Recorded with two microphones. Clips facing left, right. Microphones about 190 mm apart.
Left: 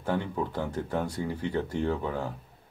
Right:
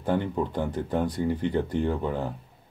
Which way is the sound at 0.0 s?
15° right (ahead or behind).